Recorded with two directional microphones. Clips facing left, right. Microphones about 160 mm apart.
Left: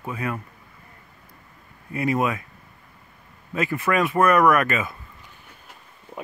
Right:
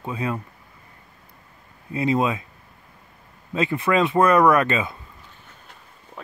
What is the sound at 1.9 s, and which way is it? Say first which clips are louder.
Speech: right 2 dB; 25° right (ahead or behind).